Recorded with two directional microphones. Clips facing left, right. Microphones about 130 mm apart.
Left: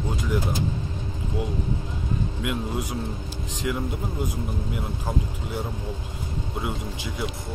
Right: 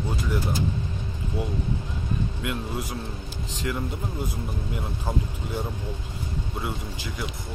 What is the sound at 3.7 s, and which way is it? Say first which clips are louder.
Speech: left 2 dB; 5° left (ahead or behind).